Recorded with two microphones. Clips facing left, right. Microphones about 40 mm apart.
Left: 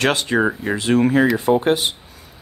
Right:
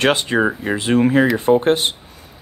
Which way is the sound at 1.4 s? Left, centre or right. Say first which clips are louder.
Right 2 dB; right.